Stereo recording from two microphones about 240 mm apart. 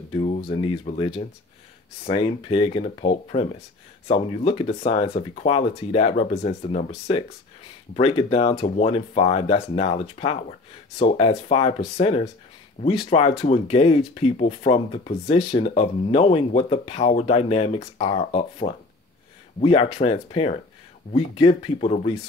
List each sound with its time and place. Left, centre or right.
0.1 s speech: left